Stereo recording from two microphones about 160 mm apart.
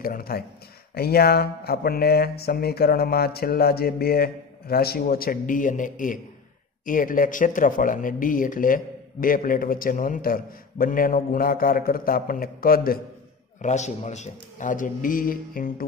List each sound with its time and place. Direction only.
0.0 s speech: 65° left (ahead or behind)
13.6 s speech: 45° left (ahead or behind)